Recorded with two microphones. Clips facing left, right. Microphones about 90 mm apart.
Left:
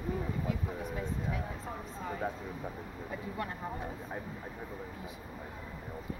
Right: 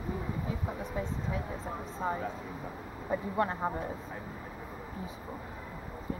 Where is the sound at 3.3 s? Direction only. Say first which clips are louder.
Right 9 dB; 35° right (ahead or behind).